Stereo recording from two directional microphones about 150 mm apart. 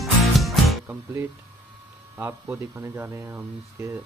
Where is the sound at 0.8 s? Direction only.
15° right (ahead or behind).